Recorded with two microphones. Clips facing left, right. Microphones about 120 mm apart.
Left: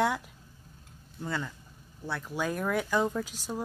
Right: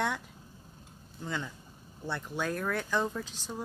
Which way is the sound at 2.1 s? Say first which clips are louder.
Left 2 dB; 10° left (ahead or behind).